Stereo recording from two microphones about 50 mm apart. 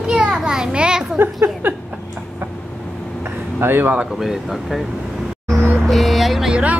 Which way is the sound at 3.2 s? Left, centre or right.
Right.